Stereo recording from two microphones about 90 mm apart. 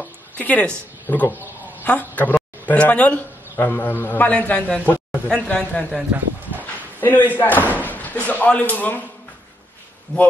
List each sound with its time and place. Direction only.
0.0 s a man's voice: 15° left (ahead or behind)
6.6 s slam: 20° left (ahead or behind)
7.8 s speech: 20° left (ahead or behind)